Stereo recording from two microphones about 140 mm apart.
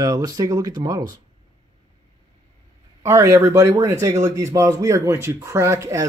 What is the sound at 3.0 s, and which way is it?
Speech, 20° right (ahead or behind).